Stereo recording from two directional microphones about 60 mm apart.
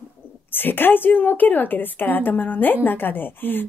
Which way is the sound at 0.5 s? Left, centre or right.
Left.